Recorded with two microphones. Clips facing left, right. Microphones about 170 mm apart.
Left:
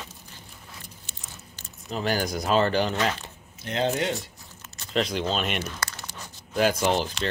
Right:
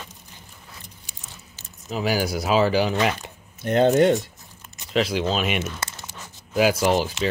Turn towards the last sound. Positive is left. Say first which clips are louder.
# right 4 dB
turn(degrees=-5)  # may be behind; listen again after turning